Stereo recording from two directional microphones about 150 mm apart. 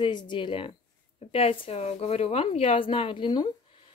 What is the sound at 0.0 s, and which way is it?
Speech, 30° left (ahead or behind).